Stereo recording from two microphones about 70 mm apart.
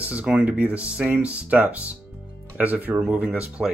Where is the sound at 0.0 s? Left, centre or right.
Centre.